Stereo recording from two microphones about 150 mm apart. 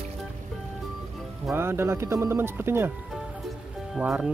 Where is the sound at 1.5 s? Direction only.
15° right (ahead or behind).